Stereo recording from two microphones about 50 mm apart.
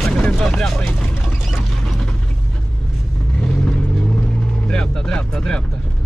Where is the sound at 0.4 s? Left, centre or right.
Centre.